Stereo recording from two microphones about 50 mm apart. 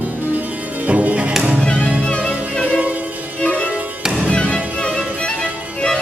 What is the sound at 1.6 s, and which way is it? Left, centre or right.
Music, centre.